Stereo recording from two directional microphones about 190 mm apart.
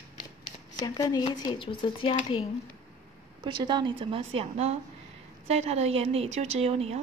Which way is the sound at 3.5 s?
25° right (ahead or behind).